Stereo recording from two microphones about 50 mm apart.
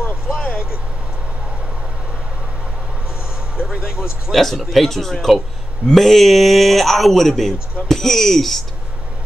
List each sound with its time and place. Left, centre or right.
0.0 s vehicle: left
0.5 s vehicle: centre
3.7 s speech: centre
4.3 s speech: centre